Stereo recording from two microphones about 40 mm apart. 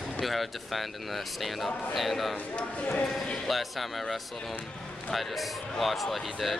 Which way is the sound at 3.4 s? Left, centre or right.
Centre.